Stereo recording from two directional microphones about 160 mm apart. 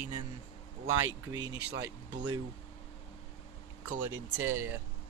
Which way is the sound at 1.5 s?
90° right.